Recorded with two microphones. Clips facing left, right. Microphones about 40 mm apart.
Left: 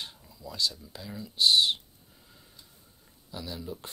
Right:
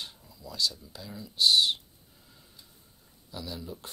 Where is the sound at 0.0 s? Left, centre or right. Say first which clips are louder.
Left 1 dB; centre.